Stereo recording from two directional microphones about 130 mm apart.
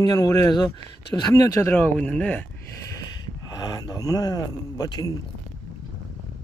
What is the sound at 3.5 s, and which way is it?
Speech, 30° left (ahead or behind).